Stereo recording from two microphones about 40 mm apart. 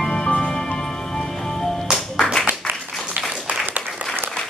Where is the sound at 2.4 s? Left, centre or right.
Right.